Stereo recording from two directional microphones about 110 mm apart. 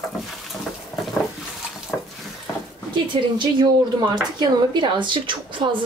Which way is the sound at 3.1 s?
45° right (ahead or behind).